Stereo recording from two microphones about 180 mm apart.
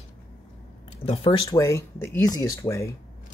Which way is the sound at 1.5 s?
15° left (ahead or behind).